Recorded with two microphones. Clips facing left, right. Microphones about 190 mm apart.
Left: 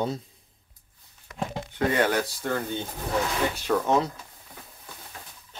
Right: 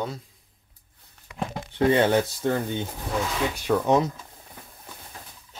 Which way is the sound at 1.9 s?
25° right (ahead or behind).